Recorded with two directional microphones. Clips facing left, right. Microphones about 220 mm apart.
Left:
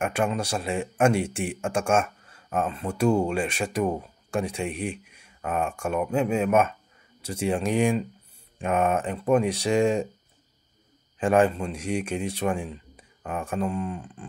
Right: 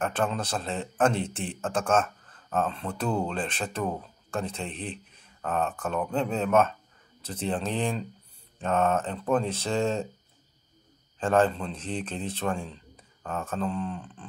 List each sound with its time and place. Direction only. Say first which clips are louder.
0.0 s speech: left 3 dB; 10° left (ahead or behind)
11.1 s speech: left 3 dB; 15° left (ahead or behind)